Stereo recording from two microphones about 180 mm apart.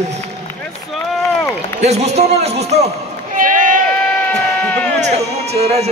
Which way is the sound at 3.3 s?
50° right (ahead or behind).